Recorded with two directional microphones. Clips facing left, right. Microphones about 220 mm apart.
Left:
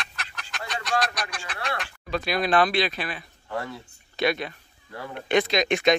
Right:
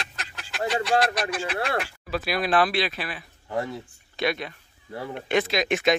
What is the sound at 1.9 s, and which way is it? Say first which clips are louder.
Speech: even; 5° right (ahead or behind).